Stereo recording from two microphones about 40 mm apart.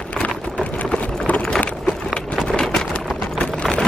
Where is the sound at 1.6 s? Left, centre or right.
Left.